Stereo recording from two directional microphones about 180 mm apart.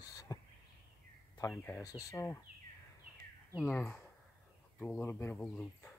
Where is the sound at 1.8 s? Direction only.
20° left (ahead or behind).